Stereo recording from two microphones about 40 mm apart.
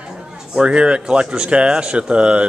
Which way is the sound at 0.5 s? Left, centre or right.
Right.